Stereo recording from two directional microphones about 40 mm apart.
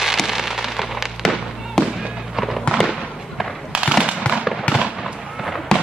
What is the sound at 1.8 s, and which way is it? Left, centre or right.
Fireworks, centre.